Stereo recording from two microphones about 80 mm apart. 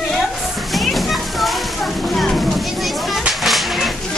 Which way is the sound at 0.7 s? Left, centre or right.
Centre.